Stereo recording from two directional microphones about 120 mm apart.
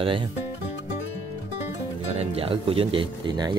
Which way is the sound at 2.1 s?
55° right (ahead or behind).